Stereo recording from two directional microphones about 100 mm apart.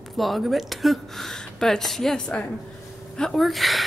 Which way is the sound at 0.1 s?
Centre (ahead or behind).